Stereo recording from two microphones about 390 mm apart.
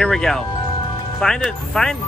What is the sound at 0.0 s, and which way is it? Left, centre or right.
Speech, centre.